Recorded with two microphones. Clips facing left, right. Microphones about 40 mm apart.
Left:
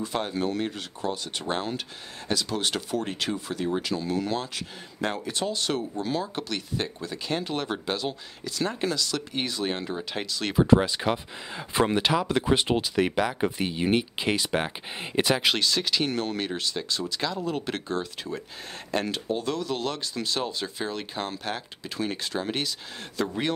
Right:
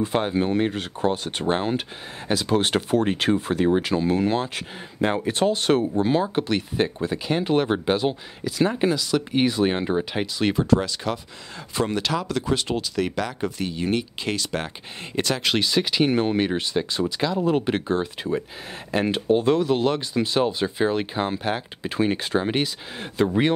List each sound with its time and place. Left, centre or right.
0.0 s speech: right
10.1 s speech: centre
10.7 s speech: centre
15.5 s speech: centre